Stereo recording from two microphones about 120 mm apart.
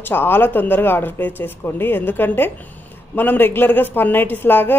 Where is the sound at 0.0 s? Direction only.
20° left (ahead or behind).